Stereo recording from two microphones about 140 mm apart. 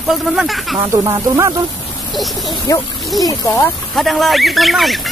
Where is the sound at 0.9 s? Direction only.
25° right (ahead or behind).